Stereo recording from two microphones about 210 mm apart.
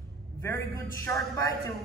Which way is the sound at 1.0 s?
15° left (ahead or behind).